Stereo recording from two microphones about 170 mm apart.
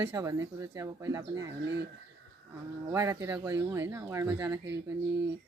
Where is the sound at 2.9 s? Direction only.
20° right (ahead or behind).